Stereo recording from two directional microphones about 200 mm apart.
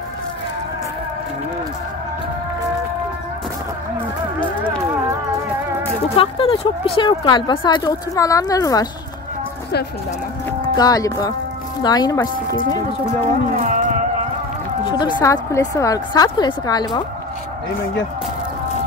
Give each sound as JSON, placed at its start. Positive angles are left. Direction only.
{"t": 6.1, "sound": "speech", "side_deg": 25}
{"t": 10.8, "sound": "speech", "side_deg": 20}
{"t": 13.6, "sound": "a sound", "side_deg": -40}
{"t": 14.9, "sound": "speech", "side_deg": 25}